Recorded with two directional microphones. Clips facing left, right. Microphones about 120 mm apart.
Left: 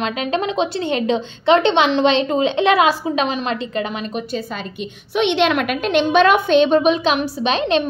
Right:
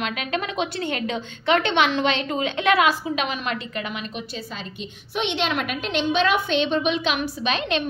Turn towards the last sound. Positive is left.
turn(degrees=30)  # may be behind; listen again after turning